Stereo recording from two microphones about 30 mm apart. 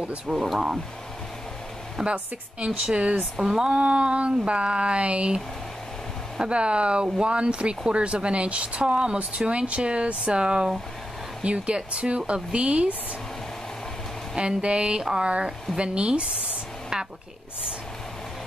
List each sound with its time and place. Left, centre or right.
0.3 s speech: centre
2.0 s speech: right
3.4 s speech: centre
3.7 s speech: right
6.4 s speech: right
11.4 s speech: right
14.3 s speech: right
16.9 s a woman's voice: centre